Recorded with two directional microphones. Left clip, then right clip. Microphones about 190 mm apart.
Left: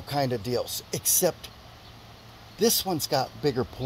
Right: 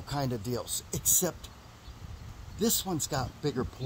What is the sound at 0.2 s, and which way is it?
Speech, 15° right (ahead or behind).